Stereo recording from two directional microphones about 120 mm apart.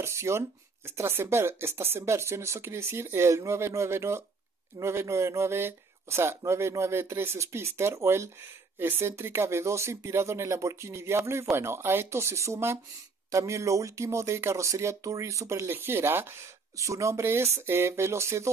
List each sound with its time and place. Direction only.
0.0 s speech: 20° right (ahead or behind)